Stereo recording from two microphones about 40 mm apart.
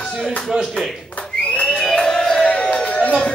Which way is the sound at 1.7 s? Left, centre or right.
Centre.